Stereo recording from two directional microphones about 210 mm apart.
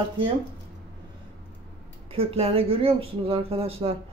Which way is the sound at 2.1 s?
25° right (ahead or behind).